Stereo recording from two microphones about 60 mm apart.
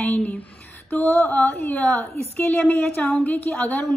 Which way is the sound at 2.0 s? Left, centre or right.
Left.